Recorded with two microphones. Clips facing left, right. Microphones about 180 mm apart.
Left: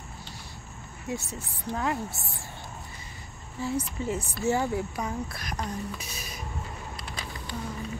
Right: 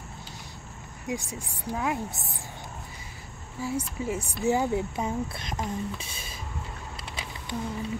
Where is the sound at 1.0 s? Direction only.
15° right (ahead or behind).